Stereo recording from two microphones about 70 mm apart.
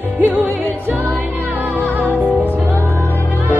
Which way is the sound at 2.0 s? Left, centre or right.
Right.